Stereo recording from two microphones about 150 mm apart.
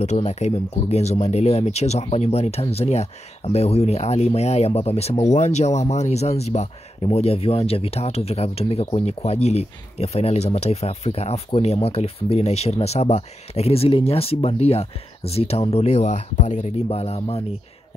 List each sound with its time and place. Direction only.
0.0 s speech: 50° left (ahead or behind)